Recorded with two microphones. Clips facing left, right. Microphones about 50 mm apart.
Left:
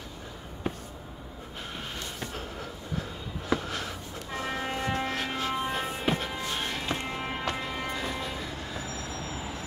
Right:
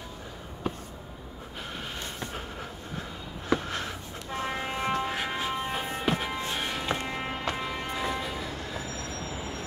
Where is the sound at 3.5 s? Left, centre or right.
Right.